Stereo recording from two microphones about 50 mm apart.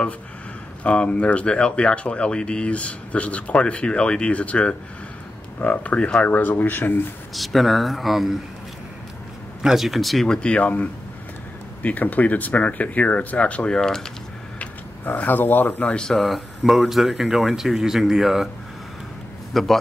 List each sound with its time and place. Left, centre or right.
0.8 s speech: left
7.3 s speech: centre
9.6 s speech: centre
10.2 s speech: centre
10.5 s speech: left
13.7 s speech: centre
15.1 s speech: left
16.1 s speech: centre
19.5 s speech: centre